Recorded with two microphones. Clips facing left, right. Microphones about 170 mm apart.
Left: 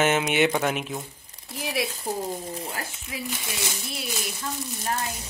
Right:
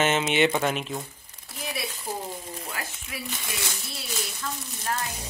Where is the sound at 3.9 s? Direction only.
20° left (ahead or behind).